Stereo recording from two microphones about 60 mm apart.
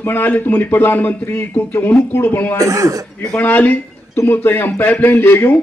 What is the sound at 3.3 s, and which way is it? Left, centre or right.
A man's voice, left.